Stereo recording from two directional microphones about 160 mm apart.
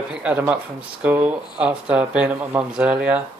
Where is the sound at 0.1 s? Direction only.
10° right (ahead or behind).